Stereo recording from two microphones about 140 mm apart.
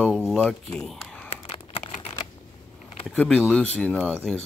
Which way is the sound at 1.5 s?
40° left (ahead or behind).